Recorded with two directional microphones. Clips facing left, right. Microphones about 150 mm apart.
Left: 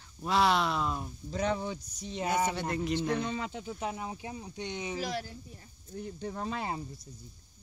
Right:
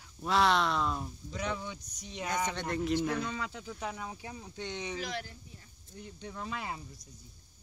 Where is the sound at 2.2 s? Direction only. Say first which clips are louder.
Left 3 dB; 10° left (ahead or behind).